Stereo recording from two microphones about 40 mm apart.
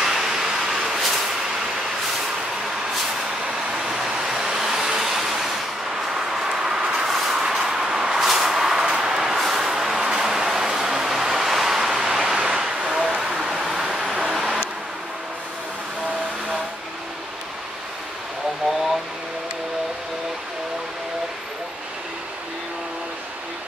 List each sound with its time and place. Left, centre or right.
0.0 s vehicle: centre
3.4 s vehicle: centre
3.9 s vehicle: centre
11.9 s a sound: centre
13.3 s vehicle: centre